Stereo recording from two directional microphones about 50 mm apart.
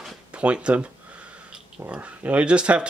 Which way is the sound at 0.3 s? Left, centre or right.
Right.